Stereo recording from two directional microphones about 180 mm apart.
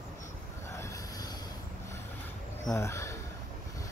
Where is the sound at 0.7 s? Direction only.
15° left (ahead or behind).